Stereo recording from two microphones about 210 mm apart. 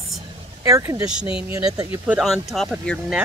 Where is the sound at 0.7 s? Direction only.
15° right (ahead or behind).